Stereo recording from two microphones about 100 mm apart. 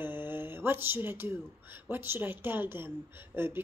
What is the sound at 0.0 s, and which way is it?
Mantra, 20° right (ahead or behind).